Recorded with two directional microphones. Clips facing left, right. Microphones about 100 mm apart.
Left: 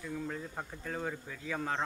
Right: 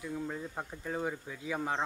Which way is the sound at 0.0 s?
15° right (ahead or behind).